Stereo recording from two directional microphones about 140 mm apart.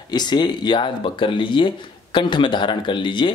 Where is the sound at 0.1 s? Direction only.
30° left (ahead or behind).